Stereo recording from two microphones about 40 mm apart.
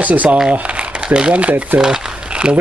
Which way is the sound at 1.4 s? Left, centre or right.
Right.